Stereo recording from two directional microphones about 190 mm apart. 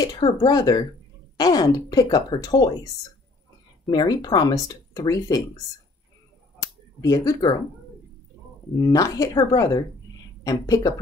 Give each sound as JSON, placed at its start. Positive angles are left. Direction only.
{"t": 0.0, "sound": "a woman's voice", "side_deg": 20}
{"t": 3.9, "sound": "a woman's voice", "side_deg": 20}
{"t": 6.6, "sound": "a sound", "side_deg": 20}
{"t": 8.7, "sound": "a woman's voice", "side_deg": 20}